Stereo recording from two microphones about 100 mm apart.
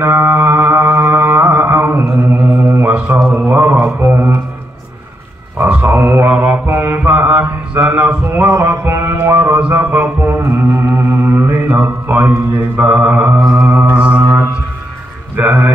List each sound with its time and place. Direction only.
0.0 s mantra: 20° right (ahead or behind)
3.2 s a sound: 5° left (ahead or behind)
3.4 s mantra: 20° right (ahead or behind)
5.6 s mantra: 15° right (ahead or behind)
8.5 s music: 25° right (ahead or behind)
12.8 s mantra: 10° right (ahead or behind)
15.3 s a sound: 15° right (ahead or behind)